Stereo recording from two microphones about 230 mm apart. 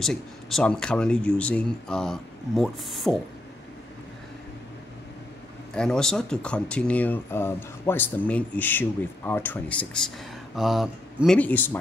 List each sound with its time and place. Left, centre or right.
0.0 s speech: centre
5.8 s speech: centre